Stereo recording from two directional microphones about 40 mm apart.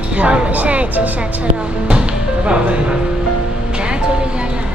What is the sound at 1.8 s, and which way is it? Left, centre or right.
Speech, right.